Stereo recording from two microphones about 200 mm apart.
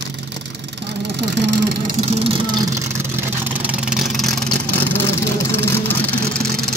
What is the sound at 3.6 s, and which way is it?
Vehicle, 5° right (ahead or behind).